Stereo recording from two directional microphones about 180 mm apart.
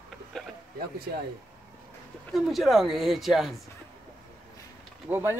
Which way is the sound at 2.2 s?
Centre (ahead or behind).